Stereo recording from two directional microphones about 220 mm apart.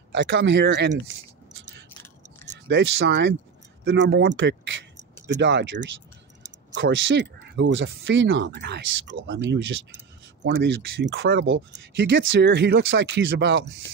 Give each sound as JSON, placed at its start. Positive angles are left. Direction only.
{"t": 0.1, "sound": "speech", "side_deg": -55}